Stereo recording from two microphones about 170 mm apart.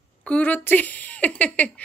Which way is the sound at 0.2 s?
10° left (ahead or behind).